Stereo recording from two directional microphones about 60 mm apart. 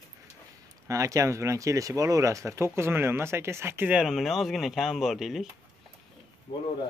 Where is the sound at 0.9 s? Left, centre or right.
Right.